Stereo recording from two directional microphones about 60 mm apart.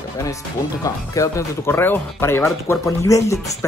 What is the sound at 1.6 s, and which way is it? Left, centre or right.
Speech, left.